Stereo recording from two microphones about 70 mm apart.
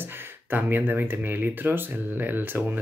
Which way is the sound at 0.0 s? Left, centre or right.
Right.